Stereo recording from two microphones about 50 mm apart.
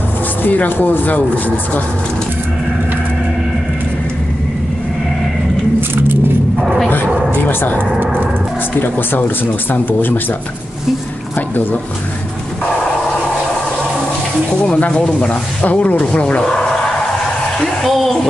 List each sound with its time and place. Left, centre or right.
0.4 s speech: left
7.4 s speech: left
11.3 s speech: left
14.8 s speech: left
17.8 s speech: centre